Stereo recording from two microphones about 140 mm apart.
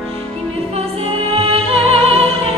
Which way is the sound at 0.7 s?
45° right (ahead or behind).